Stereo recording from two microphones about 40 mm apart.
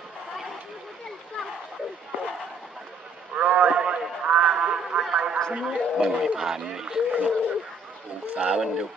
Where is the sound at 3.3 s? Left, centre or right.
Right.